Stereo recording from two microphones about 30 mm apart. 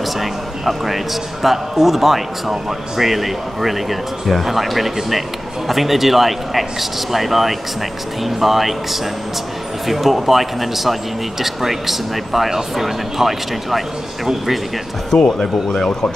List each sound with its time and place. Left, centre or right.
0.0 s a man's voice: centre
9.8 s a man's voice: centre
15.2 s speech: left